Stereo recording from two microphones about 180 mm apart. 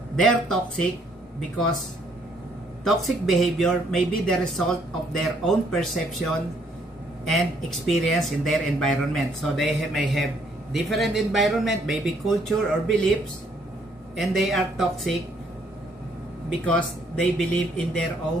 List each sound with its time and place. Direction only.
0.1 s speech: 5° left (ahead or behind)
2.8 s speech: centre (ahead or behind)
14.1 s speech: centre (ahead or behind)
16.6 s speech: 5° left (ahead or behind)